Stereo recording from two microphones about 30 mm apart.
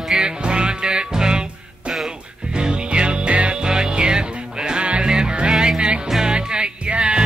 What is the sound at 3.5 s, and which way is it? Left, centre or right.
Music, right.